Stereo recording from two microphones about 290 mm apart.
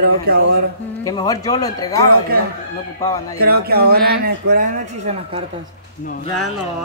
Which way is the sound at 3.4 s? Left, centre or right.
Right.